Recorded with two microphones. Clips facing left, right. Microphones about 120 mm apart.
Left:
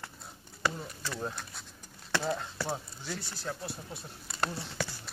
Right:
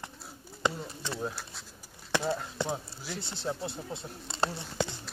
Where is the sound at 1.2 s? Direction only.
Centre (ahead or behind).